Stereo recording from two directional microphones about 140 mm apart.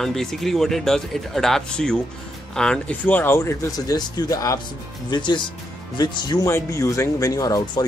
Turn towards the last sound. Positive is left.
turn(degrees=25)  # may be behind; listen again after turning